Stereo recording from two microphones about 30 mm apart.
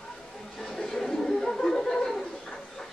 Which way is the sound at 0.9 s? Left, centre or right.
Centre.